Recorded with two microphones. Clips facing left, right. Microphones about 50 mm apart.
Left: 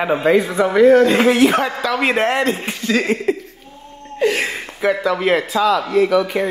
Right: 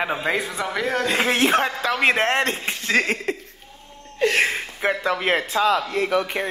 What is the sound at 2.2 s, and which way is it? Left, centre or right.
Speech, right.